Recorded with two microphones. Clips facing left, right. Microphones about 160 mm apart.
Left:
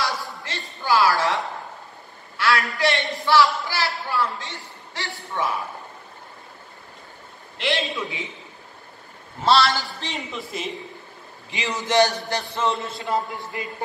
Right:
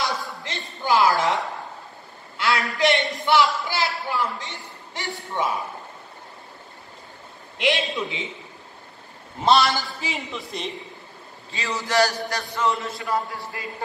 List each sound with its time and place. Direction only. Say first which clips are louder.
0.4 s a man's voice: right 2 dB; 20° right (ahead or behind)
7.5 s a man's voice: right 2 dB; 15° right (ahead or behind)
9.4 s a man's voice: even; 20° right (ahead or behind)
9.9 s a man's voice: even; centre (ahead or behind)
11.5 s a man's voice: left 2 dB; 20° left (ahead or behind)